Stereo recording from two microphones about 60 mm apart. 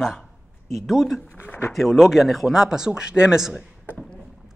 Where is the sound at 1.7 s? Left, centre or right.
Centre.